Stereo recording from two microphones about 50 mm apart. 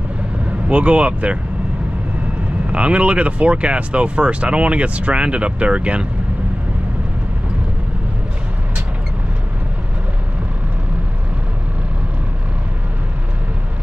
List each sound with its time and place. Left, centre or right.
0.7 s speech: right
2.6 s speech: right